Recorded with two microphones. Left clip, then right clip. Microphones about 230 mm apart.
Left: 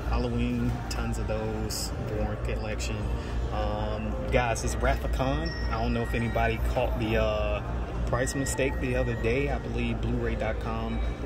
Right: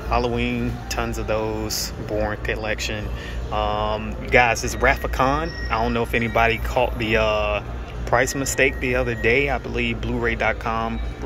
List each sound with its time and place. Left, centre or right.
0.1 s speech: centre
4.3 s speech: right
5.1 s speech: centre